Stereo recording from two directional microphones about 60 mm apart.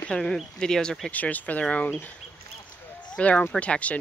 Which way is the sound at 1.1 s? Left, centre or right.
Left.